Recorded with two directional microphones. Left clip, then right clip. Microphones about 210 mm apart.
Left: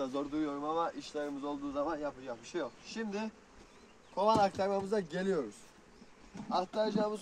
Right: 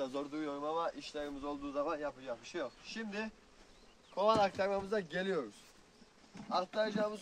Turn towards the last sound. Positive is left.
turn(degrees=5)  # may be behind; listen again after turning